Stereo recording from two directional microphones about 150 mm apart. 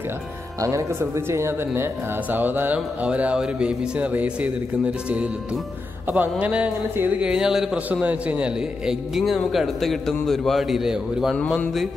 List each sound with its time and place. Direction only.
0.6 s a man's voice: 20° right (ahead or behind)
6.1 s a man's voice: 10° right (ahead or behind)
11.3 s a man's voice: 5° left (ahead or behind)